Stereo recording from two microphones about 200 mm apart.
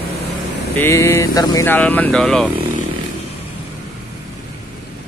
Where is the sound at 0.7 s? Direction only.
10° left (ahead or behind).